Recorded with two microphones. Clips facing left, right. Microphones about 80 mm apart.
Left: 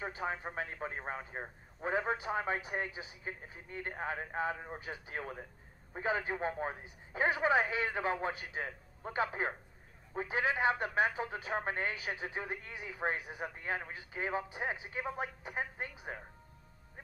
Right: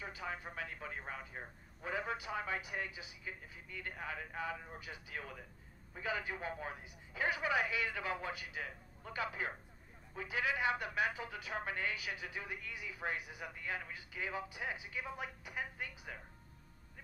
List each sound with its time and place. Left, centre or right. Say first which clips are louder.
0.0 s speech: left 6 dB; left